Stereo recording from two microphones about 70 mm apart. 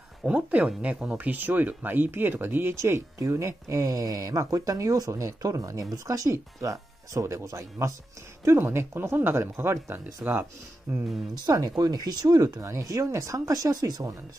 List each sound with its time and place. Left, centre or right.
0.2 s speech: centre
1.1 s speech: right
11.4 s speech: right